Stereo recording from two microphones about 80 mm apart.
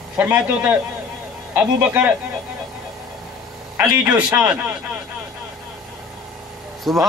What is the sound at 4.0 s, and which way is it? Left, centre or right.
Speech, centre.